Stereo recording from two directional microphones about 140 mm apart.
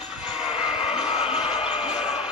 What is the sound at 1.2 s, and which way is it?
Music, 45° left (ahead or behind).